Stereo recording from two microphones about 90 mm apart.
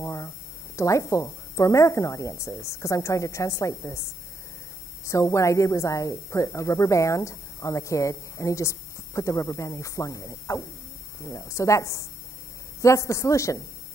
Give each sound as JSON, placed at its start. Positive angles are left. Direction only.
{"t": 0.0, "sound": "a sound", "side_deg": 35}
{"t": 0.7, "sound": "a woman's voice", "side_deg": 35}
{"t": 5.0, "sound": "a woman's voice", "side_deg": 35}